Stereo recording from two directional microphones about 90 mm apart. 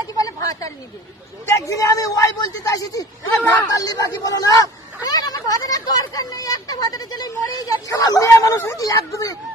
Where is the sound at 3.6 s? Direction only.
45° left (ahead or behind).